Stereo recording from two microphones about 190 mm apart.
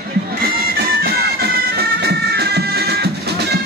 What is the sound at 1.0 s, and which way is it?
Bagpipes, 55° right (ahead or behind).